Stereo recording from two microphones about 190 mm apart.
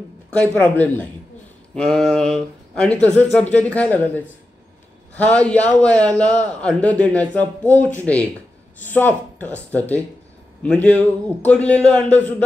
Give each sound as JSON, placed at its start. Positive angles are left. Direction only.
{"t": 0.3, "sound": "a man's voice", "side_deg": 5}